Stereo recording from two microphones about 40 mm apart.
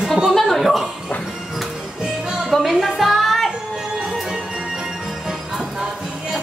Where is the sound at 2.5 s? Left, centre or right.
Centre.